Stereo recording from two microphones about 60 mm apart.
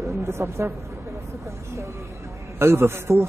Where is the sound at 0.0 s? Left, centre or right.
Right.